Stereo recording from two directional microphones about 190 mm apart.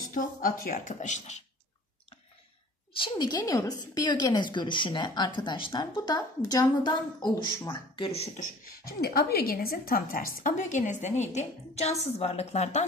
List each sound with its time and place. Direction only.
0.1 s speech: 45° left (ahead or behind)
3.0 s a woman's voice: 20° left (ahead or behind); by 12.8 s 35° left (ahead or behind)